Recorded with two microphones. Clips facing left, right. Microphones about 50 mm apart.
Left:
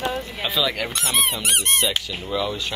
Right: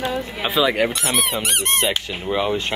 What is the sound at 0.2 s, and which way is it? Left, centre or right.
Speech, right.